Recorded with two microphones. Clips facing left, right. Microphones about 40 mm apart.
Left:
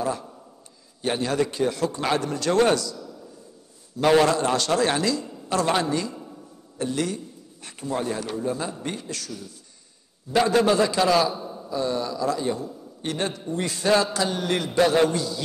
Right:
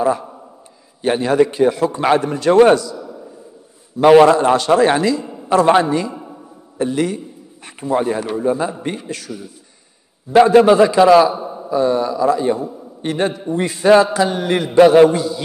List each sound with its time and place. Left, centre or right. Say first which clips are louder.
0.0 s a man's voice: right 10 dB; right